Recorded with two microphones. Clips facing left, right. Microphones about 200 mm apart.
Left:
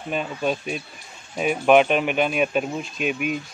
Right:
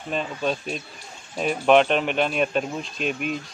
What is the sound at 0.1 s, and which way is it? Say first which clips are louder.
Speech: left 1 dB; 5° left (ahead or behind).